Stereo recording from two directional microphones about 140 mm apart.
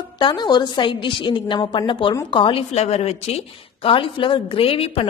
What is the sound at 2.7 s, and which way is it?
A woman's voice, 50° left (ahead or behind).